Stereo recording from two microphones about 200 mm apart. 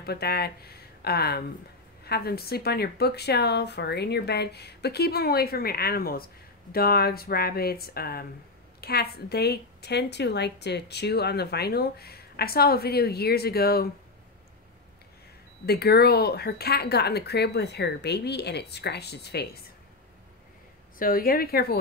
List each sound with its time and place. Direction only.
0.0 s speech: 50° left (ahead or behind)
15.6 s speech: 50° left (ahead or behind)
21.0 s speech: 45° left (ahead or behind)